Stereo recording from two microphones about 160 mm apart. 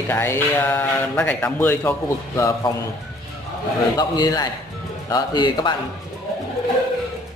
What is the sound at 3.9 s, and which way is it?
A man's voice, 25° left (ahead or behind).